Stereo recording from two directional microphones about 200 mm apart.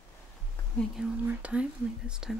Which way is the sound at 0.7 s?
5° right (ahead or behind).